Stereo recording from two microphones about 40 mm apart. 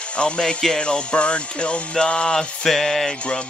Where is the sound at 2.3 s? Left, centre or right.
Centre.